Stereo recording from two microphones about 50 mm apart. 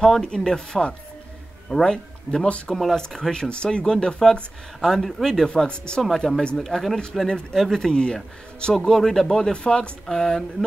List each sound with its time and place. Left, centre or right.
0.5 s speech: centre
2.4 s speech: left
2.7 s speech: centre
5.5 s speech: centre
6.6 s speech: centre
7.2 s speech: centre
7.5 s speech: centre
7.8 s speech: centre